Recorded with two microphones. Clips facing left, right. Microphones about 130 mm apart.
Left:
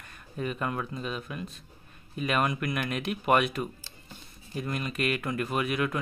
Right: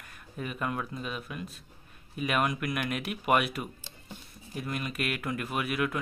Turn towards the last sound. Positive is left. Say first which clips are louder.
# left 2 dB
turn(degrees=-5)  # may be behind; listen again after turning